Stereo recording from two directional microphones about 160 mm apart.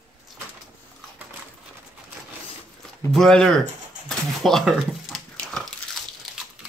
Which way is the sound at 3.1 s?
5° left (ahead or behind).